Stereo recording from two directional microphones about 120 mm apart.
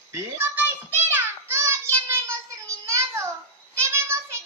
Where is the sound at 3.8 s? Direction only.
20° right (ahead or behind).